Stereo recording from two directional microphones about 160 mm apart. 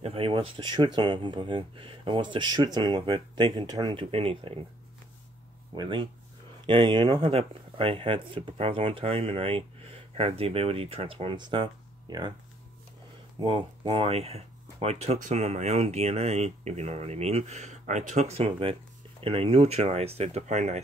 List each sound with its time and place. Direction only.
0.0 s speech: 35° right (ahead or behind)
5.8 s speech: 30° right (ahead or behind)
13.4 s speech: 35° right (ahead or behind)